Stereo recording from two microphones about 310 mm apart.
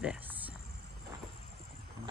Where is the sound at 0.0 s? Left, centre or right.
Centre.